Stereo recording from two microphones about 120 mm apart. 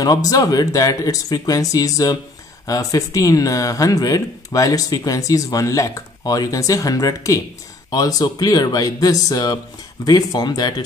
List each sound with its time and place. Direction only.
0.0 s speech: 30° left (ahead or behind)